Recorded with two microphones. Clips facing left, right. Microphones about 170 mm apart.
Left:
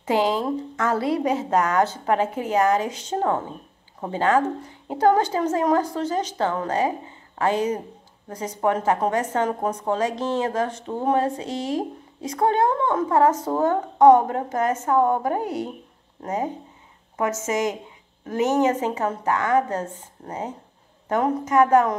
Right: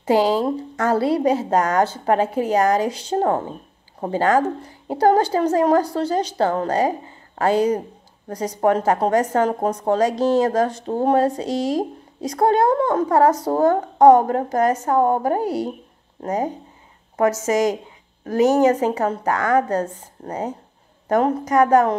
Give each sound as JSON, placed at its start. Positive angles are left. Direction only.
{"t": 0.0, "sound": "a woman's voice", "side_deg": -35}